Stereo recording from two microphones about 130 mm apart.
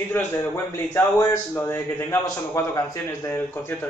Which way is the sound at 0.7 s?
20° left (ahead or behind).